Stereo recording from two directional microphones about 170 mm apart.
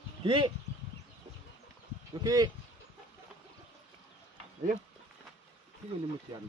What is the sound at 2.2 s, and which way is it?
Speech, 20° right (ahead or behind).